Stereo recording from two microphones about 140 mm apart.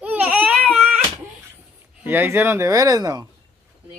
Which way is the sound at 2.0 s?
15° right (ahead or behind).